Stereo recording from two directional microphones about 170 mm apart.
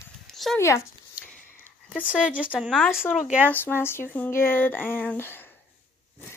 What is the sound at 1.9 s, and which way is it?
Speech, 10° left (ahead or behind).